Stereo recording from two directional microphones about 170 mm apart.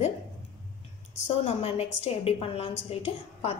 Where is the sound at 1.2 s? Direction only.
40° left (ahead or behind).